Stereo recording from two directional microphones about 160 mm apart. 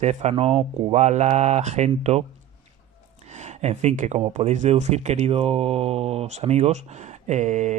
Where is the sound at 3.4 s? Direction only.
45° right (ahead or behind).